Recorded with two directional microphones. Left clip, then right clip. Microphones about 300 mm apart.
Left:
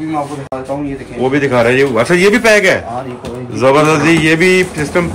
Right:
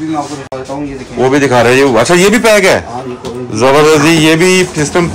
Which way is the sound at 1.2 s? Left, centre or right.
Centre.